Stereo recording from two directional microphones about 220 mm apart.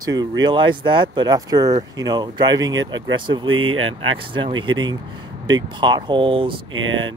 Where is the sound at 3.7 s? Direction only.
65° right (ahead or behind).